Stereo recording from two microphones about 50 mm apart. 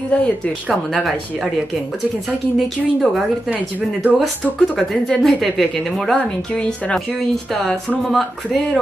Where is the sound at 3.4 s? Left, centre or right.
Right.